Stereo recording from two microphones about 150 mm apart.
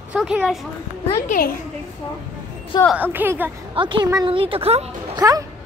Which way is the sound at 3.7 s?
35° right (ahead or behind).